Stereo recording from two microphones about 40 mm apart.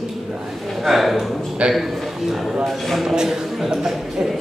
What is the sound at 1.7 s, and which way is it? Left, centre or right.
A man's voice, centre.